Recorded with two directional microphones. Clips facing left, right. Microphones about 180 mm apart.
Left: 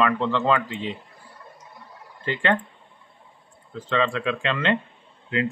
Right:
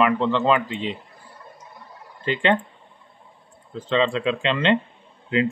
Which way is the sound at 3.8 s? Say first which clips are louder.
Right 3 dB; 20° right (ahead or behind).